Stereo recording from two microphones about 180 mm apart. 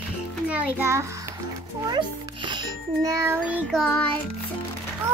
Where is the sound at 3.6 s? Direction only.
5° left (ahead or behind).